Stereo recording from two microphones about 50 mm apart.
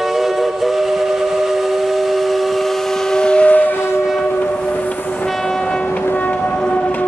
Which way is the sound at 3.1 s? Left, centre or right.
Centre.